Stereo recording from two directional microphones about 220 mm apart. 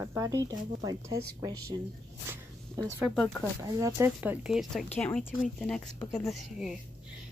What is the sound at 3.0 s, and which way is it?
Speech, centre (ahead or behind).